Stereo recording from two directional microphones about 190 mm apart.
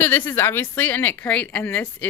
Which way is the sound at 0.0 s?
10° left (ahead or behind).